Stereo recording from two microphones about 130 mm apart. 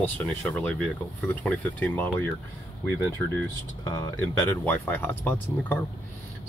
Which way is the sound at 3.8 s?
30° left (ahead or behind).